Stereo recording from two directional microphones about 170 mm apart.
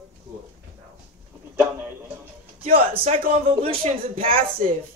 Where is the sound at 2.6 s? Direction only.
35° right (ahead or behind).